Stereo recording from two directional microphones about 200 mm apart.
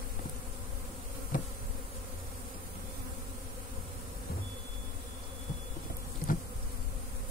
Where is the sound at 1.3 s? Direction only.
40° left (ahead or behind).